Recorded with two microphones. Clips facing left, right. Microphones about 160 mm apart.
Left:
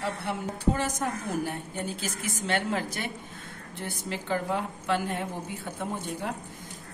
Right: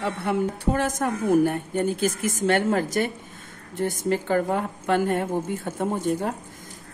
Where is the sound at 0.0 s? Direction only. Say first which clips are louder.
Right 7 dB; 55° right (ahead or behind).